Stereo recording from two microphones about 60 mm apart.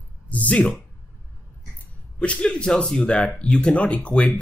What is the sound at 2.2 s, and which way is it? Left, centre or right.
Speech, centre.